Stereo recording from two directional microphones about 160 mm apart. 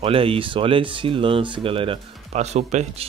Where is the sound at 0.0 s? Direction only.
35° right (ahead or behind).